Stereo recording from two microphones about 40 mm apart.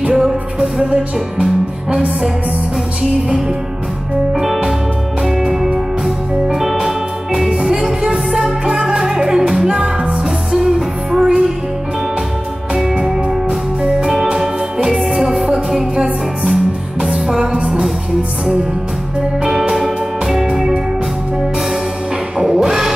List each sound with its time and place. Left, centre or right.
0.1 s music: centre
4.3 s music: centre
13.0 s music: centre
17.0 s music: centre
19.4 s music: centre
22.4 s music: centre